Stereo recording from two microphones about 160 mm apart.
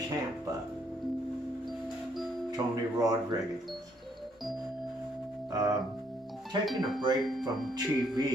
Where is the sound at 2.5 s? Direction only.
25° right (ahead or behind).